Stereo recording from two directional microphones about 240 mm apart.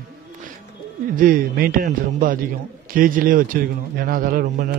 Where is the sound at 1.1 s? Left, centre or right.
Right.